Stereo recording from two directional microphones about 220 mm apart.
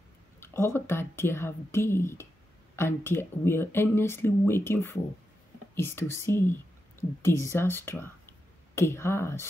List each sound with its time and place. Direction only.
0.4 s speech: 10° left (ahead or behind)